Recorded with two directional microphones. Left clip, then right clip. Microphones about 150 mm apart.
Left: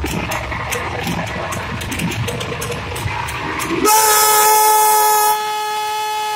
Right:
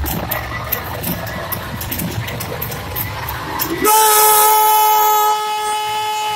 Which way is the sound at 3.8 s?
20° right (ahead or behind).